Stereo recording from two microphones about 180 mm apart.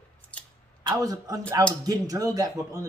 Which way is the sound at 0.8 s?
20° right (ahead or behind).